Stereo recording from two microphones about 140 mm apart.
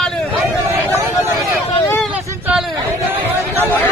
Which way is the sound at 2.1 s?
10° right (ahead or behind).